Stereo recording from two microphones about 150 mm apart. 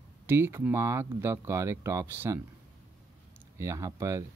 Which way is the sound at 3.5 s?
20° right (ahead or behind).